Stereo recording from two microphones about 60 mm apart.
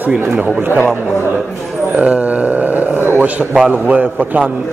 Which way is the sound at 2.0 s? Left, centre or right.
Right.